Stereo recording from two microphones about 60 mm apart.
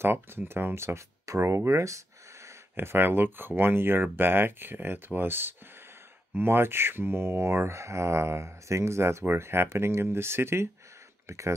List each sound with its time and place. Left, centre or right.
0.0 s speech: right
2.7 s speech: right
11.2 s speech: right